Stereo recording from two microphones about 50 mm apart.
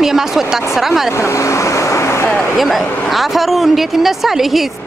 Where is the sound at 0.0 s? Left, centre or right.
Centre.